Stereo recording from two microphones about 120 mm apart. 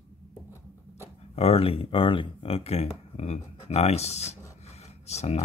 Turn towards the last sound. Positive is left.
turn(degrees=65)  # may be behind; listen again after turning